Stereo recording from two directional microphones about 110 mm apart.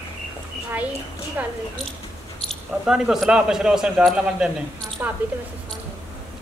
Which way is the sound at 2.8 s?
5° right (ahead or behind).